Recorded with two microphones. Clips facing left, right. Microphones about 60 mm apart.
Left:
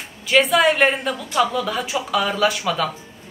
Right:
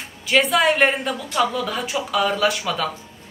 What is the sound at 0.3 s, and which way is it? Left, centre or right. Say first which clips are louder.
A woman's voice: left 1 dB; centre.